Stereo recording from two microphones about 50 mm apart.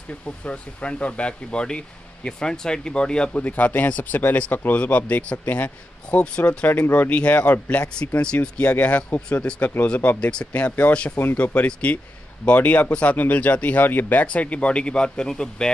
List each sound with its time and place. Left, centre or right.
0.5 s speech: left
3.3 s speech: left
6.7 s speech: left
14.2 s speech: left